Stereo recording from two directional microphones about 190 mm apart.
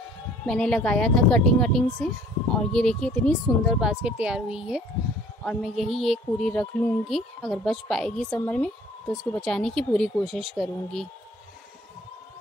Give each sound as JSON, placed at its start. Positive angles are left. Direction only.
{"t": 0.5, "sound": "speech", "side_deg": 5}